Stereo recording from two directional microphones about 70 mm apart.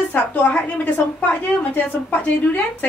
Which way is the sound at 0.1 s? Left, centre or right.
Left.